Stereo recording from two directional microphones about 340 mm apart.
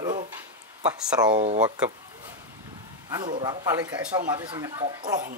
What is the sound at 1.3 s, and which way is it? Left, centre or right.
Speech, centre.